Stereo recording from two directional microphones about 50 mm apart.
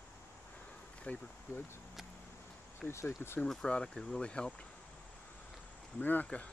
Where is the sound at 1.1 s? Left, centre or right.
Left.